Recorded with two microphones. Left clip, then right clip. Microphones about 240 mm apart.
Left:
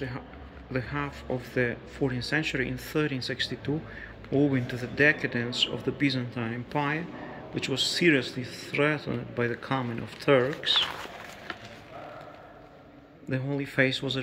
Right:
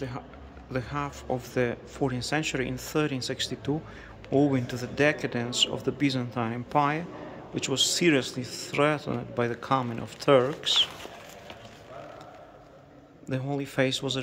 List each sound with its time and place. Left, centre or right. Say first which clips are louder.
0.7 s speech: even; centre
13.3 s speech: even; centre